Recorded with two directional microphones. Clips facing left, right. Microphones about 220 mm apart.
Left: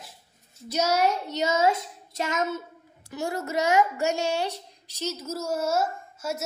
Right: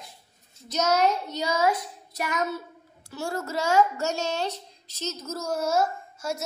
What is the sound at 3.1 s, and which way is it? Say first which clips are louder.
A child's voice: left 1 dB; 15° left (ahead or behind).